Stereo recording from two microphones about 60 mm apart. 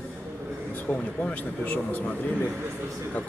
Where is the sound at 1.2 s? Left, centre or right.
Left.